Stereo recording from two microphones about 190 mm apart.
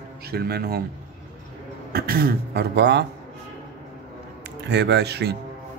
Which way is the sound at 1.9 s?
50° right (ahead or behind).